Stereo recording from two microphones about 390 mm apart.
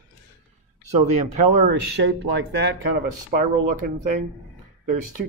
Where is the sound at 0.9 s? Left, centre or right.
Right.